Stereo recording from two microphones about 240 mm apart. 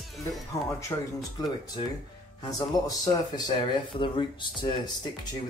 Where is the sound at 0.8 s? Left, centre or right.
Centre.